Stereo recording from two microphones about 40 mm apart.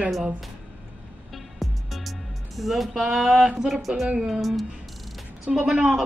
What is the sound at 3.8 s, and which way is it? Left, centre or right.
Music, centre.